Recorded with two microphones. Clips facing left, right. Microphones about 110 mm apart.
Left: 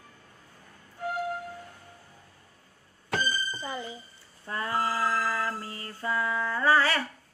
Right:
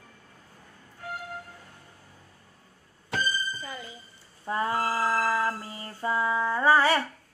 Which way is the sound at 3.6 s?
25° left (ahead or behind).